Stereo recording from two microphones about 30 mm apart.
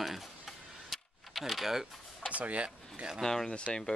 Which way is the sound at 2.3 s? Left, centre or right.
Right.